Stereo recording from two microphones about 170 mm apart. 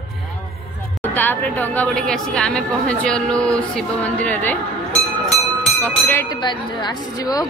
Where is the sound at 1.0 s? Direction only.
10° left (ahead or behind).